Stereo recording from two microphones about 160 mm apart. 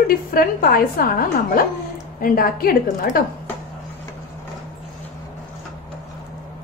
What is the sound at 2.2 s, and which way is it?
Speech, 65° left (ahead or behind).